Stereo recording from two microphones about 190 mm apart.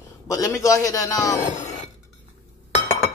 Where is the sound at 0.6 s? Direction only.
15° left (ahead or behind).